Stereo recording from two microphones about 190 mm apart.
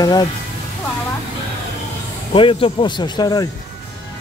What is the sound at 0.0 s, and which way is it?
Speech, 20° left (ahead or behind).